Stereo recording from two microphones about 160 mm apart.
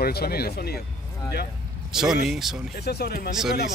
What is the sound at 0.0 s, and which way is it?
Speech, 75° left (ahead or behind).